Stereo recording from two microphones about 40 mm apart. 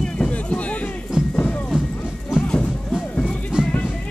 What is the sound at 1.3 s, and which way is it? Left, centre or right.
Music, left.